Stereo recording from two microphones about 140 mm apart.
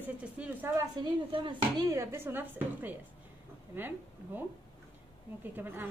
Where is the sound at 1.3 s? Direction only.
35° right (ahead or behind).